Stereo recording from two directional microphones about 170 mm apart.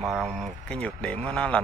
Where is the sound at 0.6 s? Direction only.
5° left (ahead or behind).